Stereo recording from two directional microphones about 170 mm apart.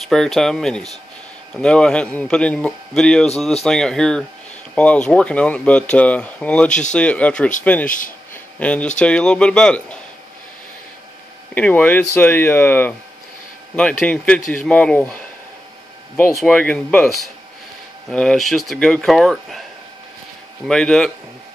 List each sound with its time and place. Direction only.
0.0 s a man's voice: centre (ahead or behind)
7.8 s speech: 50° left (ahead or behind)
8.5 s speech: 5° left (ahead or behind)
11.5 s speech: 10° left (ahead or behind)
16.3 s a man's voice: 5° left (ahead or behind)
20.6 s a man's voice: 5° left (ahead or behind)